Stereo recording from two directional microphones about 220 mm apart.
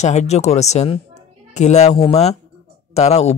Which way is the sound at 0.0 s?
30° left (ahead or behind).